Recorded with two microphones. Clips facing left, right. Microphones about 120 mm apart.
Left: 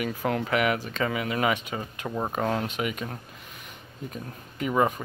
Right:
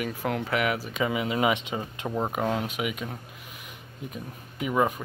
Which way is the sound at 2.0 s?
10° right (ahead or behind).